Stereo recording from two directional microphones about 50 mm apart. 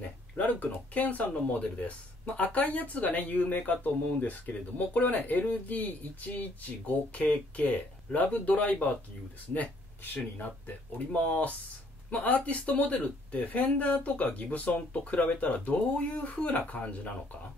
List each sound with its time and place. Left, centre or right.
0.0 s speech: left
10.1 s speech: left